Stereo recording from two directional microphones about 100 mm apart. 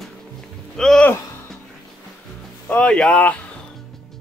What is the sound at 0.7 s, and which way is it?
Speech, 5° left (ahead or behind).